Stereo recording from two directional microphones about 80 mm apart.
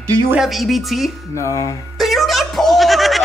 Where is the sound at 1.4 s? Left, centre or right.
Left.